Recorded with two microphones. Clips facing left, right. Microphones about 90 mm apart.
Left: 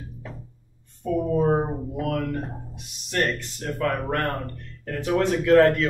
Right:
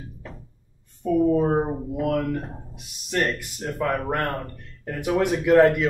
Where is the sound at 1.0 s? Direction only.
Centre (ahead or behind).